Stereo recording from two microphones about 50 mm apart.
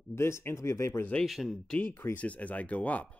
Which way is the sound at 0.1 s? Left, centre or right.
Left.